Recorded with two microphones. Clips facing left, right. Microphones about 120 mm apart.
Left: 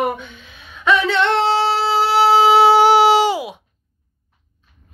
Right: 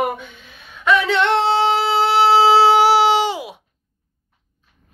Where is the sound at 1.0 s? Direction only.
10° right (ahead or behind).